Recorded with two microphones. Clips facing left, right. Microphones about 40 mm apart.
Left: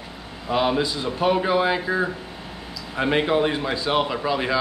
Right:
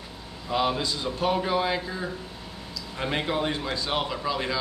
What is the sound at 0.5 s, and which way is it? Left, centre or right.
Speech, centre.